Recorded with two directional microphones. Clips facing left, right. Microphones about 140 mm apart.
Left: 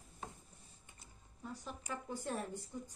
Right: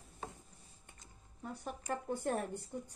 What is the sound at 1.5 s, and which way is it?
Speech, 55° right (ahead or behind).